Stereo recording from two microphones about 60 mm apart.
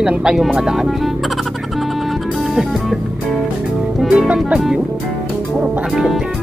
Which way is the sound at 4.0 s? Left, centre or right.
Centre.